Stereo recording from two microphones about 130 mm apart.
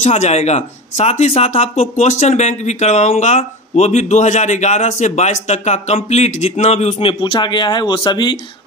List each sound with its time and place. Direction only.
0.0 s speech: 60° left (ahead or behind); by 8.4 s 35° left (ahead or behind)